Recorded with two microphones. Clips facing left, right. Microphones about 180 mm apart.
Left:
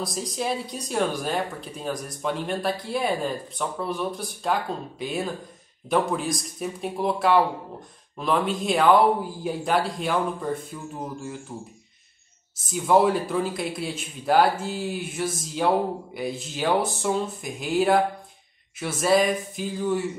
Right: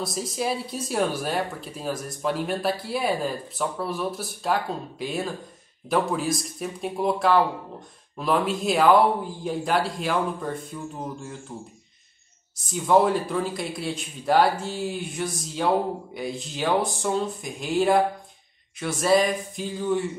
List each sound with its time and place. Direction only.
0.0 s speech: centre (ahead or behind)